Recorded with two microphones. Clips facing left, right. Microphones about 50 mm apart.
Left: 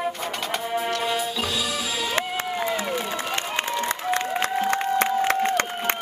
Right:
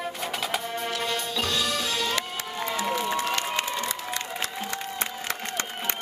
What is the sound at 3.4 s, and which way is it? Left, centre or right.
Crowd, left.